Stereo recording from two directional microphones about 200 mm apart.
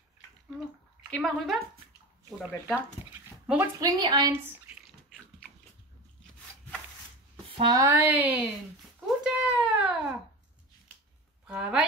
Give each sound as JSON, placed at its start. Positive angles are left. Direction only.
{"t": 1.1, "sound": "a woman's voice", "side_deg": 0}
{"t": 2.3, "sound": "speech", "side_deg": 10}
{"t": 3.1, "sound": "a sound", "side_deg": -10}
{"t": 4.0, "sound": "speech", "side_deg": -20}
{"t": 7.5, "sound": "speech", "side_deg": -20}
{"t": 9.2, "sound": "cat", "side_deg": -5}
{"t": 11.4, "sound": "speech", "side_deg": -5}